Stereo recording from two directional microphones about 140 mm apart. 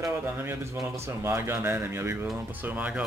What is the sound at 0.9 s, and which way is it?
Speech, 20° right (ahead or behind).